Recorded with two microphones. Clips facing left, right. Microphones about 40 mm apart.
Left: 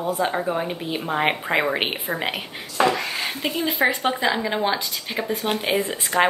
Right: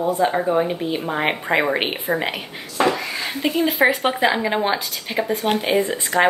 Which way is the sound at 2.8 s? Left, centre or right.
Centre.